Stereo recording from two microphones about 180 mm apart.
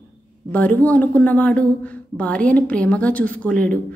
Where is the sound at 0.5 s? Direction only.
10° left (ahead or behind).